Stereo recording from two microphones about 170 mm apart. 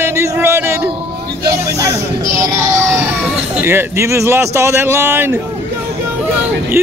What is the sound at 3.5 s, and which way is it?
Speech, 15° right (ahead or behind).